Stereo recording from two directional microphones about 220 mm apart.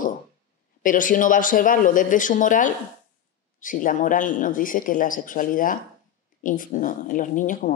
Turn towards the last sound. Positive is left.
turn(degrees=35)  # may be behind; listen again after turning